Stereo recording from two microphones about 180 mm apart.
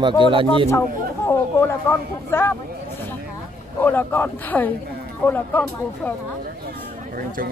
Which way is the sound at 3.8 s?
10° left (ahead or behind).